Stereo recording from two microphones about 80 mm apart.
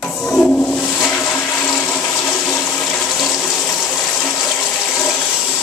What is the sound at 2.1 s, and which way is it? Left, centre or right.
Toilet flush, left.